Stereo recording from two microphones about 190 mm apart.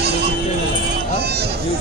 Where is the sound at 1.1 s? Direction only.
60° right (ahead or behind).